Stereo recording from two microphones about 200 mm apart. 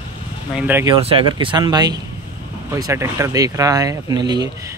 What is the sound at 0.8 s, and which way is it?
Speech, 25° right (ahead or behind).